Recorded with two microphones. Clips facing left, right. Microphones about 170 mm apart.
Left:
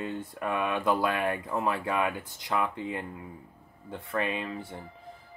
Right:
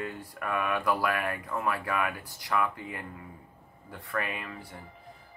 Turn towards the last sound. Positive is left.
turn(degrees=25)  # may be behind; listen again after turning